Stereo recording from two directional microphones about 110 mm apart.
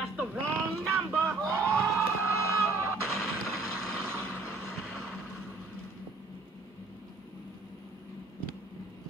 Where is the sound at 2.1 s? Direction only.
25° right (ahead or behind).